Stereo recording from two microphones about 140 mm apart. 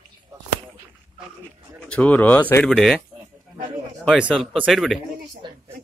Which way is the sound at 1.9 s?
10° left (ahead or behind).